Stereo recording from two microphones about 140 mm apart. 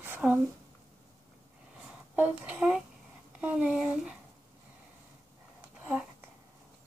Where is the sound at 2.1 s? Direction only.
10° right (ahead or behind).